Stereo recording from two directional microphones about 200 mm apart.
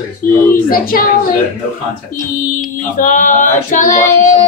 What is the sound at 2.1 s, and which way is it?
Speech, 40° left (ahead or behind).